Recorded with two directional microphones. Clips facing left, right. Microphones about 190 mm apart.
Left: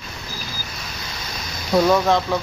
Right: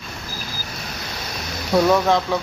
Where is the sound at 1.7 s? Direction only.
Centre (ahead or behind).